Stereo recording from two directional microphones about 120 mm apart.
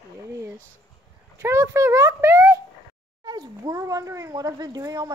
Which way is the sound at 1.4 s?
25° right (ahead or behind).